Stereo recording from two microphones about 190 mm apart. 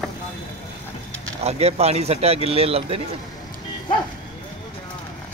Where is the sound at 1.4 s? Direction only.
35° right (ahead or behind).